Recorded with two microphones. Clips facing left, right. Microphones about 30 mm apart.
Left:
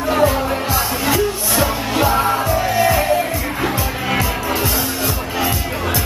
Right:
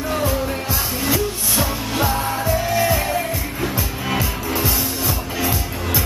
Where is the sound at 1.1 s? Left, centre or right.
Centre.